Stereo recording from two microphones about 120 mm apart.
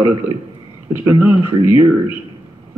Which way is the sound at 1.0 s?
25° right (ahead or behind).